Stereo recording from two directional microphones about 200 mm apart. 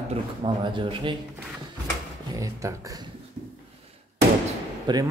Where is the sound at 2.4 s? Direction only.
15° right (ahead or behind).